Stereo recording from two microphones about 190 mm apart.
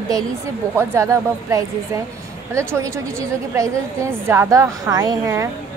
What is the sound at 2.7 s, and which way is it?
Speech, 15° right (ahead or behind).